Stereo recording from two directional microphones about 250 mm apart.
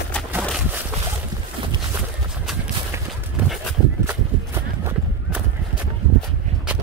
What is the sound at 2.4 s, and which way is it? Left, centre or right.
Horse, centre.